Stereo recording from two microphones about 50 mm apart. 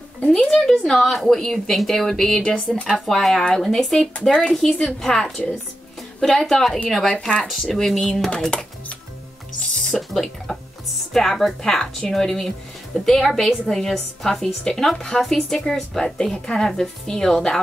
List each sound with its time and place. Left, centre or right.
0.2 s speech: centre
0.7 s speech: centre
3.1 s speech: centre
4.1 s speech: left
4.4 s speech: centre
7.2 s speech: centre
7.4 s speech: centre
8.3 s speech: centre
9.9 s speech: centre
12.9 s speech: centre